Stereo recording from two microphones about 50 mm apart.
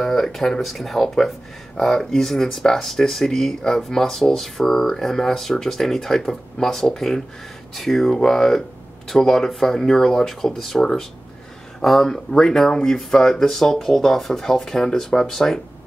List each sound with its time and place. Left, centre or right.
0.0 s speech: centre